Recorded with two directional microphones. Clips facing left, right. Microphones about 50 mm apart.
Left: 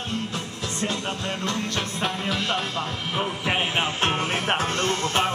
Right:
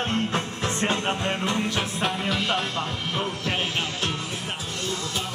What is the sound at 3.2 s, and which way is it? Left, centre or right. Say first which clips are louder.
Music: left 3 dB; left.